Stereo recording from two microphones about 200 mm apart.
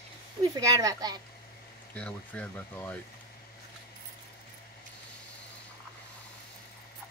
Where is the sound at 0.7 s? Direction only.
20° right (ahead or behind).